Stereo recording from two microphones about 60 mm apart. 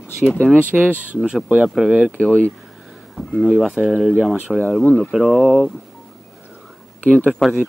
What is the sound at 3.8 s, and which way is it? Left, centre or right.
Speech, centre.